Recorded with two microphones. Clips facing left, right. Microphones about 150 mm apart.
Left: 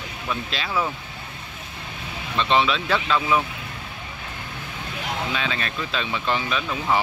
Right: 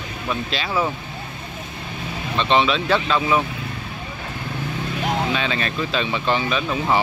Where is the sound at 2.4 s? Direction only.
Centre (ahead or behind).